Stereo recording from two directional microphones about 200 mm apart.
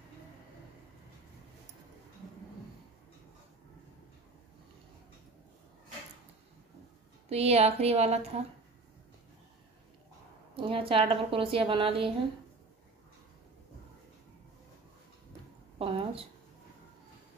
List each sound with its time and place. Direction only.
7.2 s speech: 30° right (ahead or behind)
10.5 s a woman's voice: 25° right (ahead or behind)
15.8 s a sound: 25° right (ahead or behind)